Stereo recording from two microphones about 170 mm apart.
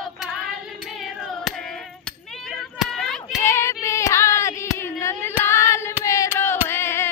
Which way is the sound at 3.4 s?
15° left (ahead or behind).